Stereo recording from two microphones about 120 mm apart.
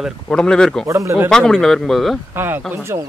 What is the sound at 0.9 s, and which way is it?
Speech, 25° right (ahead or behind).